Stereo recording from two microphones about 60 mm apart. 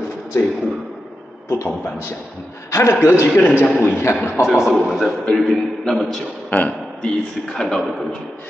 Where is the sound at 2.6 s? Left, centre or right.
Left.